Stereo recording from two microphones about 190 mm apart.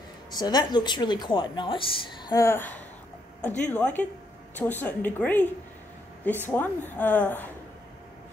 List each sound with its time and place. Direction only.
0.3 s a woman's voice: 20° left (ahead or behind)